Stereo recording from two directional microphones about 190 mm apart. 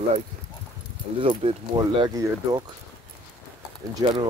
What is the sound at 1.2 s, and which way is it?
Speech, 30° right (ahead or behind).